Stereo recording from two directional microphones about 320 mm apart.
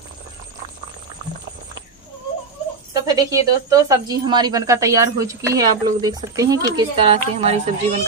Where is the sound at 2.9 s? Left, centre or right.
Centre.